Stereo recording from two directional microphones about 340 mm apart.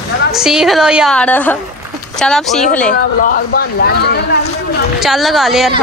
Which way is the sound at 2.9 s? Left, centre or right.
Left.